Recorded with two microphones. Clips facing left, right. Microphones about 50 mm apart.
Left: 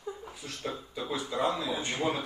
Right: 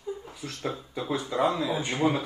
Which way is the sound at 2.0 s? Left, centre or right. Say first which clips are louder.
Right 6 dB; right.